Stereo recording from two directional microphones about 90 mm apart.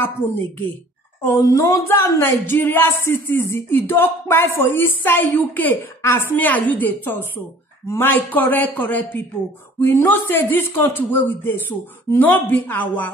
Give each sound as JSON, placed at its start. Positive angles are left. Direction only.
{"t": 1.2, "sound": "a woman's voice", "side_deg": 35}
{"t": 2.4, "sound": "speech", "side_deg": 25}